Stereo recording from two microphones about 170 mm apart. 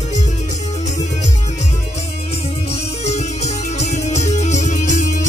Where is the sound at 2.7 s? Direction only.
40° left (ahead or behind).